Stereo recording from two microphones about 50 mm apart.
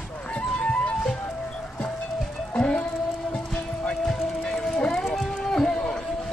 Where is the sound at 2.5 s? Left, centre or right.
Left.